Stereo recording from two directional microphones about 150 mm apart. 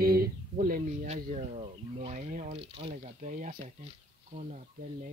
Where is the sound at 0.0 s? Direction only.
85° right.